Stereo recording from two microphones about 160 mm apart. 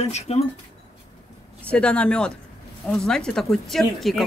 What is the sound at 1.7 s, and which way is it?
Speech, 5° left (ahead or behind).